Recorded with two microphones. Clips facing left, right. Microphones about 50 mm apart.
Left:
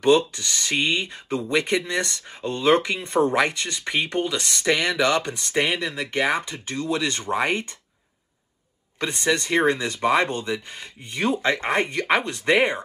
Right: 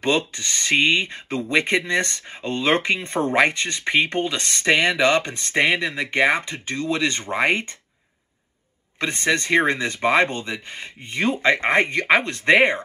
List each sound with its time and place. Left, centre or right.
0.0 s speech: right
9.0 s speech: right
12.5 s speech: right